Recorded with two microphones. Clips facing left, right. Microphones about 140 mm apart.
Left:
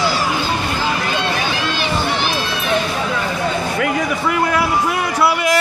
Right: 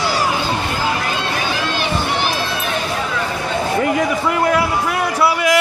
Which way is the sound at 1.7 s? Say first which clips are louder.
Even; 50° right (ahead or behind).